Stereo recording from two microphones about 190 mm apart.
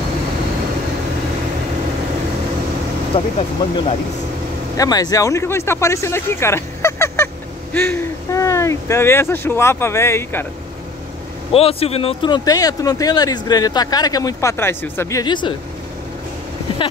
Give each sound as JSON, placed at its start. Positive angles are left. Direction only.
{"t": 3.3, "sound": "speech", "side_deg": 30}
{"t": 4.7, "sound": "speech", "side_deg": 20}
{"t": 11.5, "sound": "speech", "side_deg": 30}